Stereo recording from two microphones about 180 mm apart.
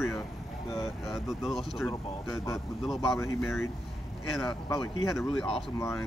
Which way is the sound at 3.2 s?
15° left (ahead or behind).